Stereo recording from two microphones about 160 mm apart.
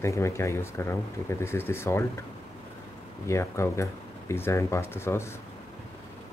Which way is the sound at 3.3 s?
15° left (ahead or behind).